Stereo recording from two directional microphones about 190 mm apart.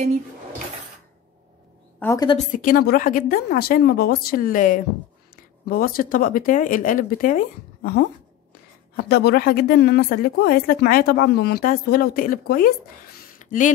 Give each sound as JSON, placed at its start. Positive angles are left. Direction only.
{"t": 2.0, "sound": "a woman's voice", "side_deg": 15}
{"t": 2.3, "sound": "a woman's voice", "side_deg": 45}